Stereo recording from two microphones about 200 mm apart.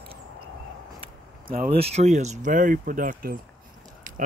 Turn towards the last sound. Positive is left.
turn(degrees=-45)  # may be behind; listen again after turning